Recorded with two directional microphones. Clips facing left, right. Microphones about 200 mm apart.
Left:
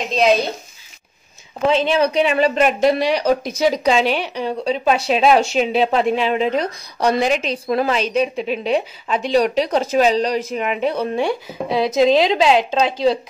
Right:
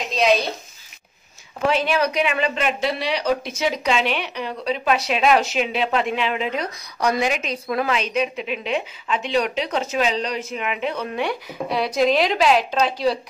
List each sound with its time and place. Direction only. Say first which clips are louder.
0.1 s speech: left 3 dB; centre (ahead or behind)
1.7 s speech: left 4 dB; 25° left (ahead or behind)